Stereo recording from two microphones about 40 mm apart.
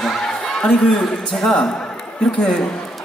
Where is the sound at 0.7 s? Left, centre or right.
Centre.